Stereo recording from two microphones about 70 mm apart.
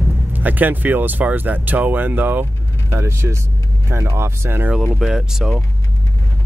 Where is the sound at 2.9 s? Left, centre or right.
Right.